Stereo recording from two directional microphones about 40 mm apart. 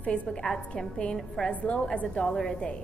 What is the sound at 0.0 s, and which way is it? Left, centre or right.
Speech, left.